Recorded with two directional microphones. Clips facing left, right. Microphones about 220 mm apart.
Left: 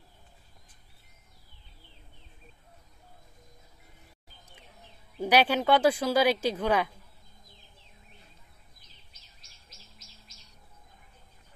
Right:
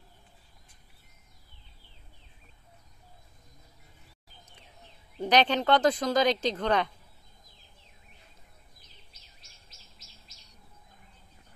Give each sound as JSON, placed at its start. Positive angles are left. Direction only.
{"t": 5.2, "sound": "speech", "side_deg": 10}